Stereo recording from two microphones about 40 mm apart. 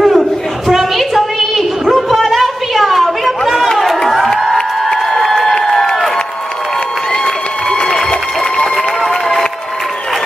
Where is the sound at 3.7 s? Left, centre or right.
Centre.